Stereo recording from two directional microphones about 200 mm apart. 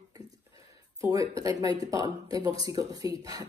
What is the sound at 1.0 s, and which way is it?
Speech, 15° right (ahead or behind).